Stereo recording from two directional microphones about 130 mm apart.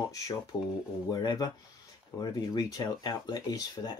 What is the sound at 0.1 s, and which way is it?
Speech, 30° left (ahead or behind).